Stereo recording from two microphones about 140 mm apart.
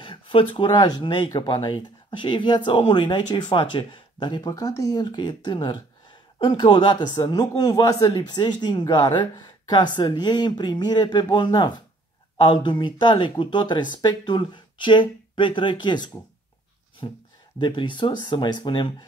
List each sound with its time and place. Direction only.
0.0 s speech: 40° left (ahead or behind)